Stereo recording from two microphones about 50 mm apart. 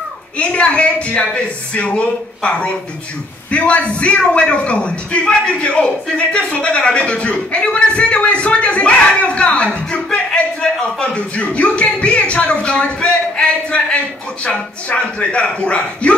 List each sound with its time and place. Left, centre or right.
0.4 s a man's voice: left